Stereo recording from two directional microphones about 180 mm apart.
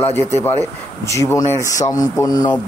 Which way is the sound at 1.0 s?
15° left (ahead or behind).